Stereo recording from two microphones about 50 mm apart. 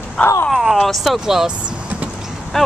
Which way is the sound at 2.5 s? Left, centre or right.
Centre.